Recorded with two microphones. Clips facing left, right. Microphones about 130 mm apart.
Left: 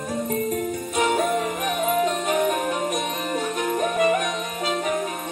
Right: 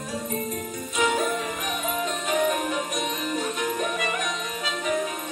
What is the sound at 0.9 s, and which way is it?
Music, 55° left (ahead or behind).